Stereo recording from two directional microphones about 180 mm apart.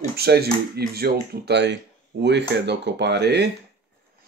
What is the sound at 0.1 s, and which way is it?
Speech, 60° right (ahead or behind).